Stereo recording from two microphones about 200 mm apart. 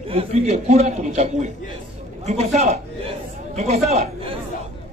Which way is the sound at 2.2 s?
35° right (ahead or behind).